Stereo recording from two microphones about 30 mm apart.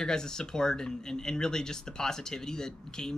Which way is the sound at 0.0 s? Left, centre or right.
Left.